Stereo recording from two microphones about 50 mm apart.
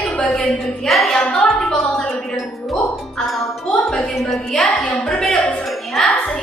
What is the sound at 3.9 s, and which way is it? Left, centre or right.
Speech, centre.